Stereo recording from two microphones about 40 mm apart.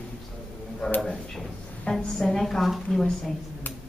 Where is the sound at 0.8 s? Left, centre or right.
Centre.